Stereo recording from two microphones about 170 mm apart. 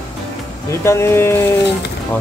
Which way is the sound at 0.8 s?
15° left (ahead or behind).